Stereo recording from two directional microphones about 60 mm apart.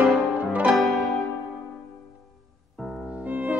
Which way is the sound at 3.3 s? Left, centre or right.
Right.